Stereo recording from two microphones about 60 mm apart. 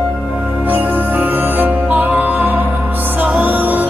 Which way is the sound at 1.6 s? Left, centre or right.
Right.